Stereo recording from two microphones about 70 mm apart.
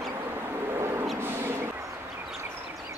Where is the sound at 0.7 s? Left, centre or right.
Right.